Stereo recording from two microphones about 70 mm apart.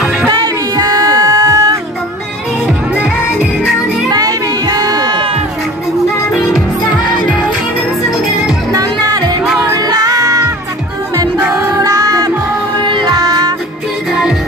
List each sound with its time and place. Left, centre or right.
0.3 s music: right
4.1 s a sound: right
6.3 s music: centre
8.7 s music: right
10.2 s music: right
11.7 s music: right